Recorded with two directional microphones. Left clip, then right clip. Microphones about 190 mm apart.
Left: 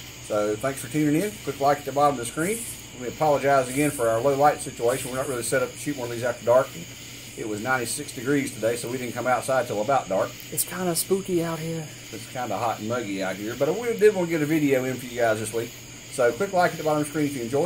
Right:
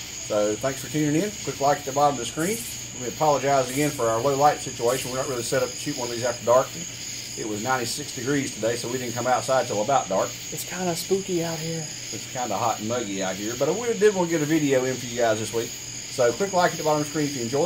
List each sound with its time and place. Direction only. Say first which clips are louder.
0.3 s speech: right 1 dB; 10° left (ahead or behind)
7.6 s speech: even; 10° left (ahead or behind)
10.7 s speech: even; 35° left (ahead or behind)
12.4 s speech: right 1 dB; 10° left (ahead or behind)